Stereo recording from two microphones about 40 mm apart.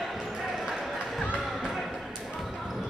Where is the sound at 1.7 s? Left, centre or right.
Centre.